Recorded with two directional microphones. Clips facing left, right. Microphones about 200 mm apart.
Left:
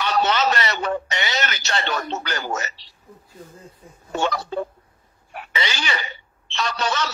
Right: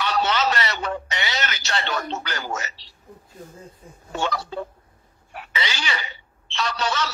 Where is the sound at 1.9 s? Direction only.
50° left (ahead or behind).